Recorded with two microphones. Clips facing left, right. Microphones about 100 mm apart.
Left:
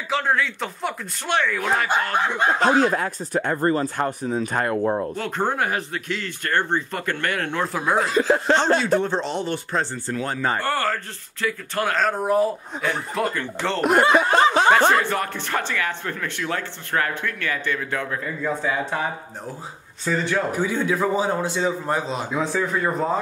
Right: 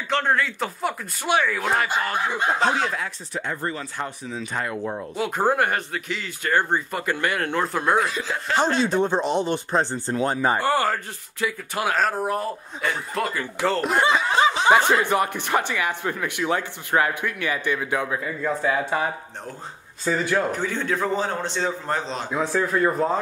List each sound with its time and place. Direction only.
0.1 s speech: centre (ahead or behind)
2.6 s speech: 45° left (ahead or behind)
5.1 s speech: 10° right (ahead or behind)
8.0 s speech: 40° left (ahead or behind)
8.7 s speech: 20° right (ahead or behind)
13.7 s speech: 60° left (ahead or behind)
14.1 s snicker: 55° left (ahead or behind)
14.9 s speech: 15° right (ahead or behind)
18.4 s speech: centre (ahead or behind)
20.1 s speech: 5° right (ahead or behind)
20.5 s a man's voice: 10° left (ahead or behind)